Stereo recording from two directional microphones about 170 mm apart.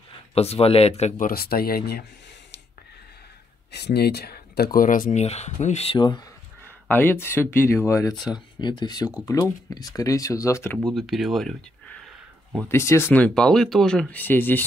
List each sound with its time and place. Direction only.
0.3 s speech: 35° left (ahead or behind); by 2.0 s 65° left (ahead or behind)
3.7 s speech: 75° left (ahead or behind); by 5.2 s 50° left (ahead or behind)
5.2 s speech: 40° left (ahead or behind)
6.9 s speech: 10° left (ahead or behind)
10.9 s speech: centre (ahead or behind)
12.5 s speech: 15° left (ahead or behind)